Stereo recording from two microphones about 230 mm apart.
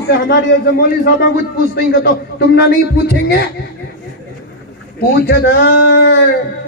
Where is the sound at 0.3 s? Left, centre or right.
Left.